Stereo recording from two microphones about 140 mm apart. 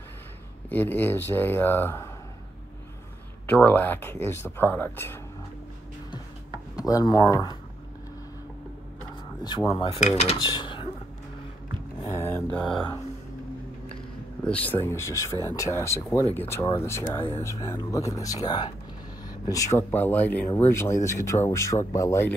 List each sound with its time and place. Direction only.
0.7 s speech: 15° left (ahead or behind)
3.4 s speech: 10° left (ahead or behind)
6.8 s speech: 25° left (ahead or behind)
9.4 s speech: 30° left (ahead or behind); by 10.3 s 50° left (ahead or behind)
10.5 s a sound: 35° left (ahead or behind)
12.1 s mantra: 15° left (ahead or behind)
14.4 s speech: 10° left (ahead or behind); by 18.7 s 30° left (ahead or behind)
19.2 s a sound: 25° left (ahead or behind)
19.9 s speech: 15° left (ahead or behind)